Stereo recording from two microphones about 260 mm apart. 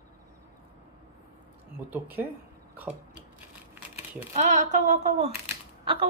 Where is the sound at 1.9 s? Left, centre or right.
Centre.